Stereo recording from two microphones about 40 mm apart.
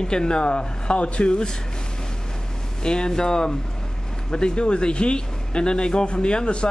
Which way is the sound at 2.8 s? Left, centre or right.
Centre.